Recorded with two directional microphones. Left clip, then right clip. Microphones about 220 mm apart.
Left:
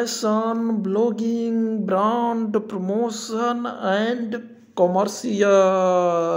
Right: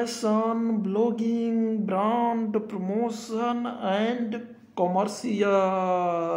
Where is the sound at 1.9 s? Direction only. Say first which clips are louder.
Left 5 dB; 20° left (ahead or behind).